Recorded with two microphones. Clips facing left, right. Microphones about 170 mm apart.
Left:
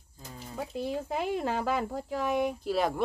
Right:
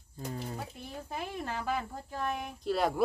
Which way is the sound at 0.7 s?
80° left.